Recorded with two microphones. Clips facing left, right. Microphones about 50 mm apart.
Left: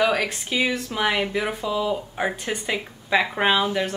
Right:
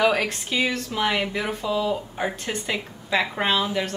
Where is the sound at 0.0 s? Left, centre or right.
Centre.